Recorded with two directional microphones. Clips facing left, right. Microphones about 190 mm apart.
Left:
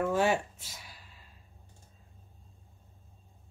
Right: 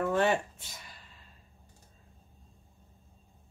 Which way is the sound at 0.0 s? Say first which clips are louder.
Even; 5° left (ahead or behind).